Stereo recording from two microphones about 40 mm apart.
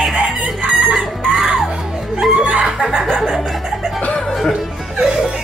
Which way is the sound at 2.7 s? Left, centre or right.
Centre.